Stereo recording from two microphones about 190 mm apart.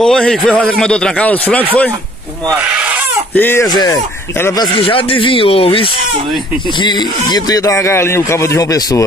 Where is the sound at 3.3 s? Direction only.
10° left (ahead or behind).